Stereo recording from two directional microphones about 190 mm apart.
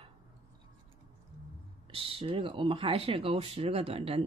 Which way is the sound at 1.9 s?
30° right (ahead or behind).